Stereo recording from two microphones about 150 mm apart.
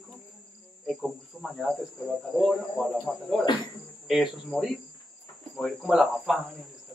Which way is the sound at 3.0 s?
5° left (ahead or behind).